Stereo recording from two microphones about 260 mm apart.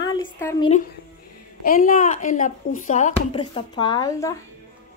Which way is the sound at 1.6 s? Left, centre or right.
Left.